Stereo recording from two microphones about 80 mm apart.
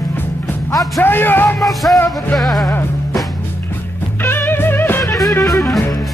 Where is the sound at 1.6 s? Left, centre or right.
Centre.